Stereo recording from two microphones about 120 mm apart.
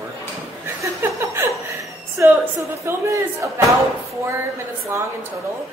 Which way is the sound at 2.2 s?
15° right (ahead or behind).